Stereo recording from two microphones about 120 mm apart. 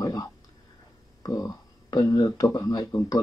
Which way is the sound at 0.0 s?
30° left (ahead or behind).